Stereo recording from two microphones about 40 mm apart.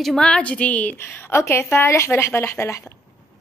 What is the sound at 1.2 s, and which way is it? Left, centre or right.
Speech, left.